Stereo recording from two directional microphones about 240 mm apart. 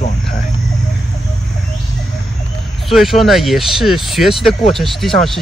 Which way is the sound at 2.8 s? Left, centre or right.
Centre.